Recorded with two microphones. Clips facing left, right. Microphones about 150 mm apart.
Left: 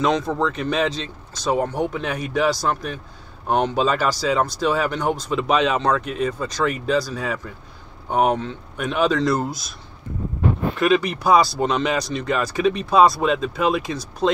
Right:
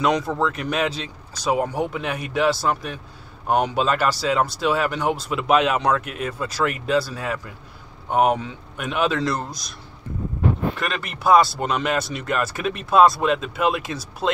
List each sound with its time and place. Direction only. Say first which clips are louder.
0.0 s speech: left 1 dB; 10° right (ahead or behind)
10.8 s speech: left 9 dB; centre (ahead or behind)